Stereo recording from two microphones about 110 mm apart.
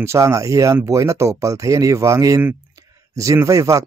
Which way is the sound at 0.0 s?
25° right (ahead or behind).